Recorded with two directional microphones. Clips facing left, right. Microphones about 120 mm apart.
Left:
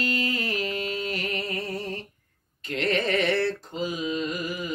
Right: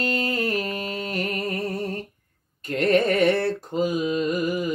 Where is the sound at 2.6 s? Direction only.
45° right (ahead or behind).